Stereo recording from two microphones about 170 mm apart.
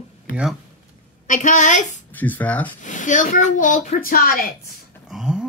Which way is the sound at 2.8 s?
50° left (ahead or behind).